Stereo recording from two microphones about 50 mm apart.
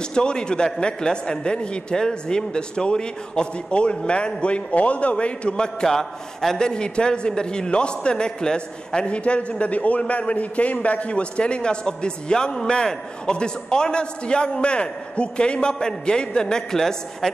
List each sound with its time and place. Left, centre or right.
0.1 s a man's voice: centre